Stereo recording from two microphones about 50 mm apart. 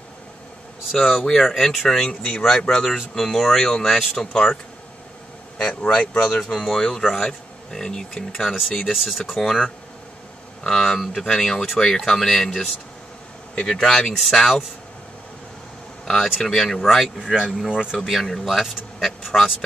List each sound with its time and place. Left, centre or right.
0.9 s speech: centre
3.2 s speech: centre
5.6 s speech: centre
10.6 s speech: centre
16.1 s speech: centre
17.2 s speech: centre
17.9 s speech: centre